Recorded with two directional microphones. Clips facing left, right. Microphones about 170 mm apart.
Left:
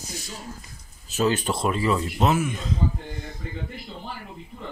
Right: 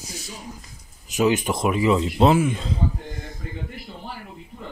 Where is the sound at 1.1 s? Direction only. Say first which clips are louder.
Right 3 dB; 15° right (ahead or behind).